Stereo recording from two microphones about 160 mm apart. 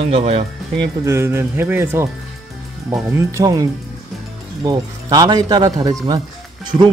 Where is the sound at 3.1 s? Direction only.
20° right (ahead or behind).